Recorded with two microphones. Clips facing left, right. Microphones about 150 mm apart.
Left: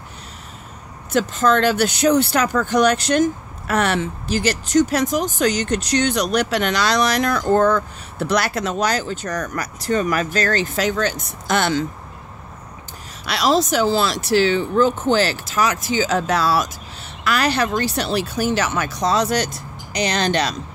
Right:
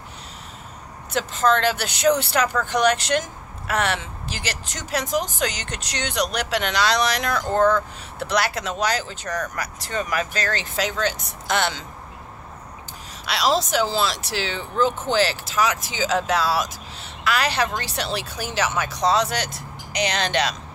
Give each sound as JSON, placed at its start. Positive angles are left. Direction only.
{"t": 1.1, "sound": "speech", "side_deg": 45}
{"t": 13.2, "sound": "speech", "side_deg": 50}